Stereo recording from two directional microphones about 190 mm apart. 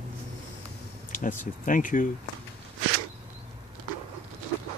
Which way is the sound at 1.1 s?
45° left (ahead or behind).